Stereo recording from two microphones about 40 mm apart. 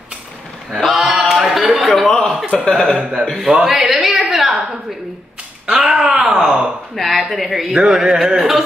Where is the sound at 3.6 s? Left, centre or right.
Centre.